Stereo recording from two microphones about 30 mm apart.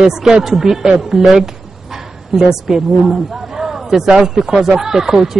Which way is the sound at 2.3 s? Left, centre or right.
Centre.